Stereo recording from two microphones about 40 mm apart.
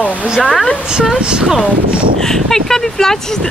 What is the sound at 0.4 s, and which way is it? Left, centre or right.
Speech, centre.